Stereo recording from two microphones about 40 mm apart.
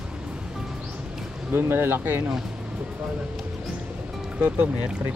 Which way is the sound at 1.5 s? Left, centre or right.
Right.